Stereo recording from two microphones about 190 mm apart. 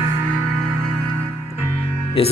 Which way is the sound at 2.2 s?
30° left (ahead or behind).